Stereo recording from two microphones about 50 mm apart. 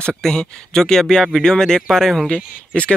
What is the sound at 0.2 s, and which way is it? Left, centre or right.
Speech, centre.